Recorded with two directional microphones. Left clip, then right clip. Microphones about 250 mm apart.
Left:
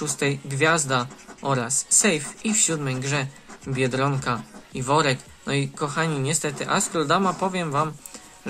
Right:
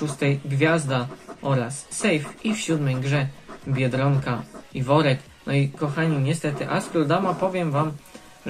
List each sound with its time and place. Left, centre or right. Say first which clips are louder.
0.0 s speech: even; left